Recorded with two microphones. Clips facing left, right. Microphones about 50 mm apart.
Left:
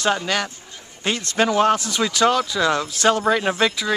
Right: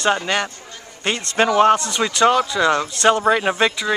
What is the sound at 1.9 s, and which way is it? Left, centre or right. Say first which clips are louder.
Speech: right 2 dB; centre.